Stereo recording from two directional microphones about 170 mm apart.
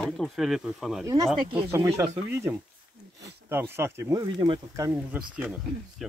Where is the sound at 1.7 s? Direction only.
20° right (ahead or behind).